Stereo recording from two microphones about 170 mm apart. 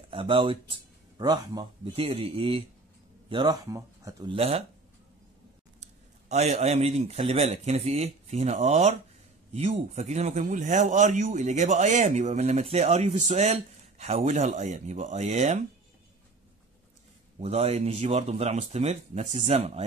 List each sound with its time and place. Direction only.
0.1 s speech: 30° right (ahead or behind)
4.3 s speech: 35° right (ahead or behind)
5.8 s a man's voice: 40° right (ahead or behind)
17.4 s speech: 35° right (ahead or behind)